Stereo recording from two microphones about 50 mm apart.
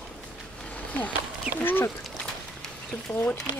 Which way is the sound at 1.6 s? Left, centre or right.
Left.